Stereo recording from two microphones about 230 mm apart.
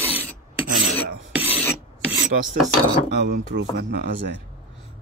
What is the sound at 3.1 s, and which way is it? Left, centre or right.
Dishes, right.